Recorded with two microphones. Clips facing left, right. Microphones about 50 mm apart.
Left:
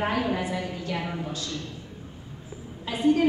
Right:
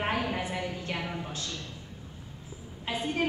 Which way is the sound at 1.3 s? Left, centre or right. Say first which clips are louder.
Left 4 dB; right.